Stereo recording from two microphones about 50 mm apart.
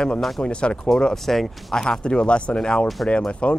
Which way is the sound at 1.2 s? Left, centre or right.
Centre.